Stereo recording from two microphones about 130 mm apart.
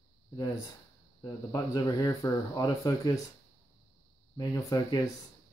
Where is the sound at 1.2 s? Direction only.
30° left (ahead or behind).